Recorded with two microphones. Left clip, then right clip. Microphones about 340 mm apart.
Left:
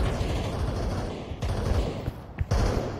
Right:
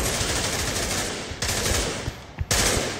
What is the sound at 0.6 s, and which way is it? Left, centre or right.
Machine gun, right.